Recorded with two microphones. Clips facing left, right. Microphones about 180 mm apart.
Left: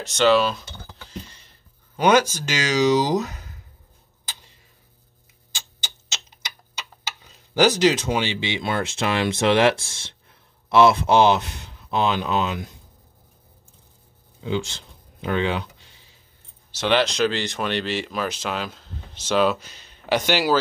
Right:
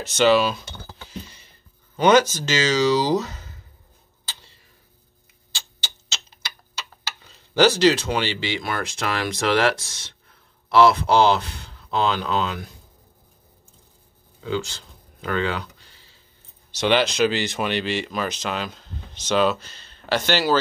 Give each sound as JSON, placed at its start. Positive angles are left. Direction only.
{"t": 0.0, "sound": "speech", "side_deg": -5}
{"t": 2.0, "sound": "speech", "side_deg": 10}
{"t": 5.5, "sound": "tick-tock", "side_deg": 15}
{"t": 10.7, "sound": "speech", "side_deg": 25}
{"t": 14.4, "sound": "speech", "side_deg": 20}
{"t": 16.7, "sound": "speech", "side_deg": 0}